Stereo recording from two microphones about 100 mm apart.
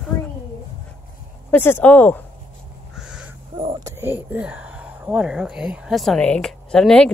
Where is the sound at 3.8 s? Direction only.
30° right (ahead or behind).